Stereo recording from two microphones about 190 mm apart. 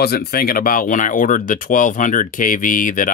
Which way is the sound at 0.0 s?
55° left (ahead or behind).